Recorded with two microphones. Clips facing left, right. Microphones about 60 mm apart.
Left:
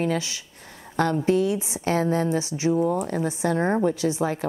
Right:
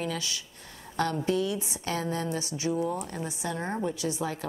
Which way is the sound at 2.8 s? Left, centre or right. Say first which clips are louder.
Left 7 dB; left.